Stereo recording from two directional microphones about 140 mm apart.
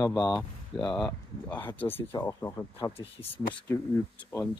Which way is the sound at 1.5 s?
15° left (ahead or behind).